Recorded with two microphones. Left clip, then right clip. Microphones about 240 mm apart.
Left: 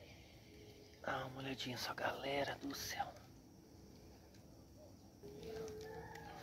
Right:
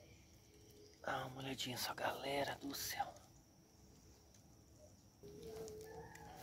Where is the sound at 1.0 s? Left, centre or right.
Right.